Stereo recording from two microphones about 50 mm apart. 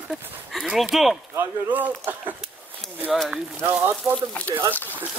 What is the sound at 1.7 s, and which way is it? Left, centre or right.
Speech, right.